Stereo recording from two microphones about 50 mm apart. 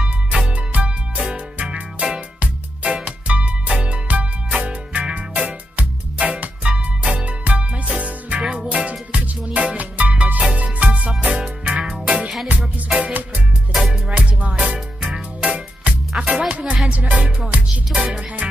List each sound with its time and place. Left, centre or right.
0.0 s music: right
12.4 s music: right
14.7 s music: centre
18.4 s music: right